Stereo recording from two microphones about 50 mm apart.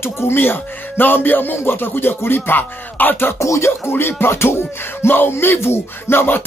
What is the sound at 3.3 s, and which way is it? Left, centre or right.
Music, left.